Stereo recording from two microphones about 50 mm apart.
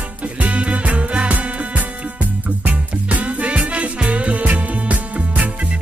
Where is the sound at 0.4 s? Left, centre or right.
Right.